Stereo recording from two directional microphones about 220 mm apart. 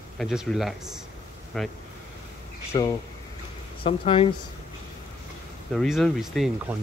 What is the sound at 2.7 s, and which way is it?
Speech, 20° left (ahead or behind).